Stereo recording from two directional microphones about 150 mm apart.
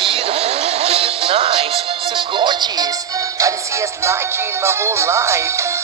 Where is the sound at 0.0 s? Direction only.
40° right (ahead or behind).